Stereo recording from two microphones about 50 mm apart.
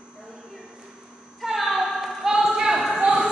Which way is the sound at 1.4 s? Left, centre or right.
Centre.